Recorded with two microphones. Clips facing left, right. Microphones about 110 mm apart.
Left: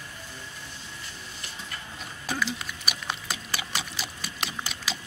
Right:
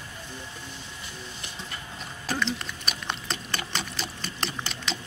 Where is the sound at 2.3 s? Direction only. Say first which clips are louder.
Right 1 dB; 5° left (ahead or behind).